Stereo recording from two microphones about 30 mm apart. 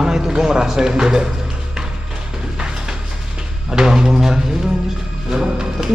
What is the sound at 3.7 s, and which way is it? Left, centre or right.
Speech, right.